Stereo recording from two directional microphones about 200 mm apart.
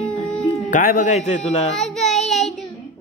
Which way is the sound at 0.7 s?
45° left (ahead or behind).